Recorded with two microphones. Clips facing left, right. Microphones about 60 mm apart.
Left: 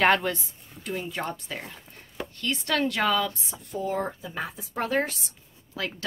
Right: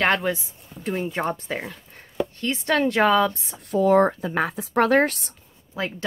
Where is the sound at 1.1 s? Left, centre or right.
Right.